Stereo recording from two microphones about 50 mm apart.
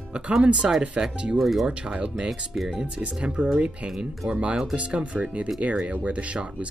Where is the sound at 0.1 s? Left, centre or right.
Centre.